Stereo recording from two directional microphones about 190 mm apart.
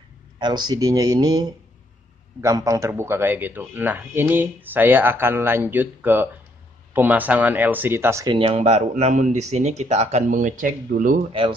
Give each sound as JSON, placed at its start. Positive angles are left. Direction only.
{"t": 0.4, "sound": "speech", "side_deg": -25}